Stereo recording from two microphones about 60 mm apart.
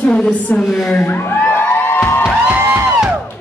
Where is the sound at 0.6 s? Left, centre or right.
Centre.